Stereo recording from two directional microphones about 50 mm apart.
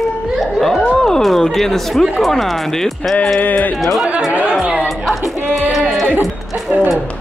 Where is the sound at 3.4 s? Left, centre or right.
Left.